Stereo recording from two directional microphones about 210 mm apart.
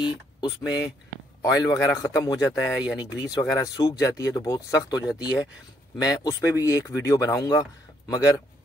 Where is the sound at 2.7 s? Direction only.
5° right (ahead or behind).